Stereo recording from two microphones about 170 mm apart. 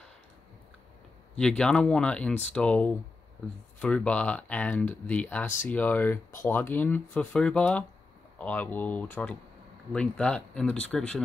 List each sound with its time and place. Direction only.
1.4 s speech: 5° left (ahead or behind)